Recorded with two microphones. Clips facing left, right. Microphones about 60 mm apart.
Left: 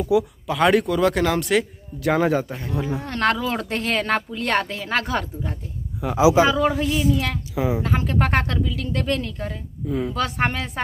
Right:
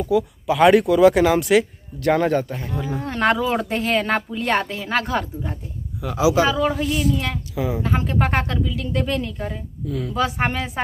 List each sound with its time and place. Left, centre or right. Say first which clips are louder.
0.0 s speech: even; centre
2.0 s speech: right 1 dB; centre
3.1 s speech: right 3 dB; centre
5.9 s speech: left 2 dB; left
6.4 s speech: left 1 dB; centre
7.5 s speech: left 2 dB; left
7.8 s speech: right 1 dB; centre
9.8 s speech: left 3 dB; left
10.1 s speech: right 5 dB; centre